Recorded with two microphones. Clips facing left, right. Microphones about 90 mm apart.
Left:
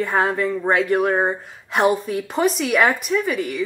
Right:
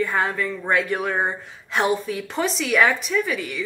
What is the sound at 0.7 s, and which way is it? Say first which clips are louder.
A woman's voice: left 4 dB; 50° left (ahead or behind).